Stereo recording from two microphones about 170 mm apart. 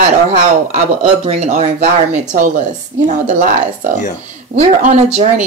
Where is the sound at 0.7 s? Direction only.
40° right (ahead or behind).